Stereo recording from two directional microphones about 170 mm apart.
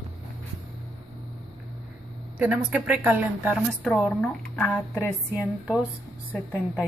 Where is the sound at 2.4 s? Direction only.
5° right (ahead or behind).